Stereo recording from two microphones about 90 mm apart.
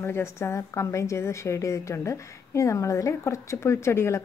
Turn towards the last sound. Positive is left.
turn(degrees=30)  # may be behind; listen again after turning